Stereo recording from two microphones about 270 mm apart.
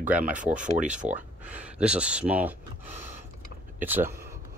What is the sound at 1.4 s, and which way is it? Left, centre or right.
Speech, centre.